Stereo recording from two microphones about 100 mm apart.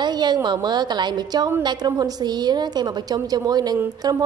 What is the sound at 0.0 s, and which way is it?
A woman's voice, 45° right (ahead or behind).